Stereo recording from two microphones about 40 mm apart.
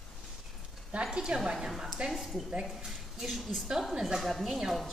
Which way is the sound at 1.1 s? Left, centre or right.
Right.